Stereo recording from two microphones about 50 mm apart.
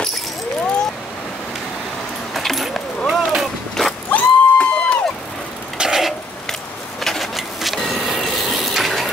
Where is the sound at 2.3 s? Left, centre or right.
Centre.